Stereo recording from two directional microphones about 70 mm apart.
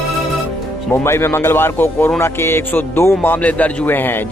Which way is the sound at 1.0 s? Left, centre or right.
Left.